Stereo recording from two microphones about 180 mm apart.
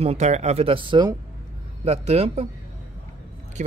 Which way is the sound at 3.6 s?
40° right (ahead or behind).